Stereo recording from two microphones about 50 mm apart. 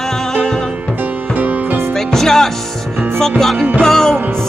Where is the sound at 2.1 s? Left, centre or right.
Centre.